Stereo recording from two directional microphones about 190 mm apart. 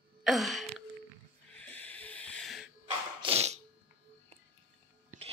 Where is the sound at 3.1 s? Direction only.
30° right (ahead or behind).